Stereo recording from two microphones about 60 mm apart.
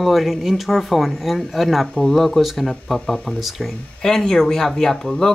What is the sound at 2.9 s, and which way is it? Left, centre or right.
Speech, centre.